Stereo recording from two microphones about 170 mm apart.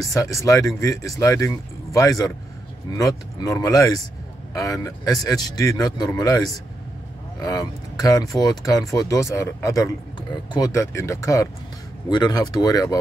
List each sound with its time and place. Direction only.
0.0 s speech: 20° left (ahead or behind)